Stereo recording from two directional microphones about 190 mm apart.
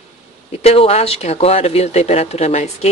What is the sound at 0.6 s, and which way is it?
Speech, 30° left (ahead or behind).